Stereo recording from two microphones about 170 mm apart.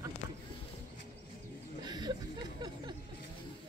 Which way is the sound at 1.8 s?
25° right (ahead or behind).